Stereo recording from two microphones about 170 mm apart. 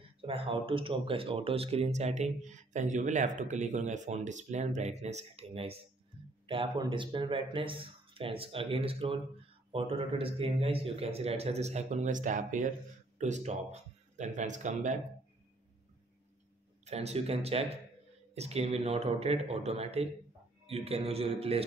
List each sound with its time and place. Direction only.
0.2 s speech: 30° right (ahead or behind)
16.8 s speech: 40° right (ahead or behind)